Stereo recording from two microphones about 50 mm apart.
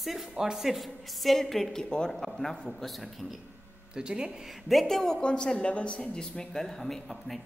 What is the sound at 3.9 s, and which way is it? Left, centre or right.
Speech, centre.